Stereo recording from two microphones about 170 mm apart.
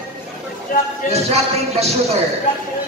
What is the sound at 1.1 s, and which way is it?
A man's voice, 35° right (ahead or behind).